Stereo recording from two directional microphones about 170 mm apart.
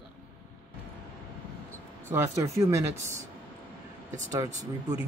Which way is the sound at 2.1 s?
15° right (ahead or behind).